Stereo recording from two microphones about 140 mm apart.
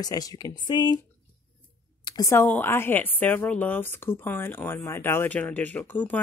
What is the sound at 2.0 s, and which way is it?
Speech, 25° left (ahead or behind).